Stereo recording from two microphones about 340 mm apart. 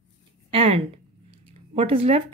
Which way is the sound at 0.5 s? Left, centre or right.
Centre.